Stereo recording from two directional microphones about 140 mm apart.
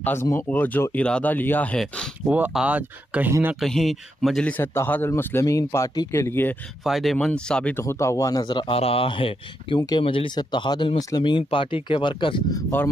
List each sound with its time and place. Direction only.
0.0 s a man's voice: 20° left (ahead or behind)
2.2 s speech: 10° right (ahead or behind)
3.5 s a man's voice: centre (ahead or behind)
6.8 s speech: centre (ahead or behind)
7.7 s speech: 20° left (ahead or behind); by 9.8 s 40° left (ahead or behind)
9.8 s speech: 30° left (ahead or behind)